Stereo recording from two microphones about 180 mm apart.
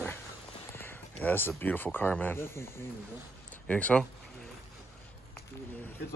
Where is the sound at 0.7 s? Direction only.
10° left (ahead or behind).